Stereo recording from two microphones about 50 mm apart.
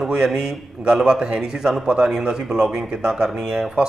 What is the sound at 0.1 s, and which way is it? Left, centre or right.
A man's voice, centre.